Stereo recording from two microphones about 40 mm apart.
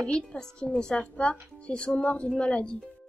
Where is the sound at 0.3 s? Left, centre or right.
Left.